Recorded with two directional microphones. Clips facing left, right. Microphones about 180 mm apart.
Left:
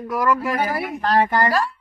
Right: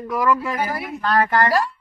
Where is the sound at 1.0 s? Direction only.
30° left (ahead or behind).